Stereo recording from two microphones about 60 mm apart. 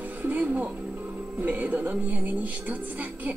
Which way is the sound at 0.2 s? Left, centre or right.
Right.